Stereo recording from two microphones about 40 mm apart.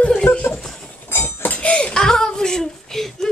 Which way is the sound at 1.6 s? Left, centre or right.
Left.